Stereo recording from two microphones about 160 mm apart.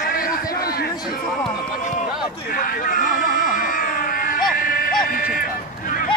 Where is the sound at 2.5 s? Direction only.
65° left (ahead or behind).